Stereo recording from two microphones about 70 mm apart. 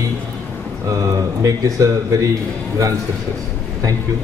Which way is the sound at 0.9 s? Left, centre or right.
Right.